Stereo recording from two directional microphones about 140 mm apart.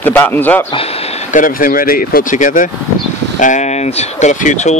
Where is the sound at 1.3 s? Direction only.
75° left (ahead or behind).